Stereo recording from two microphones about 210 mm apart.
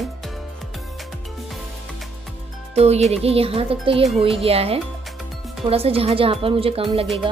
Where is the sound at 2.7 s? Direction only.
30° right (ahead or behind).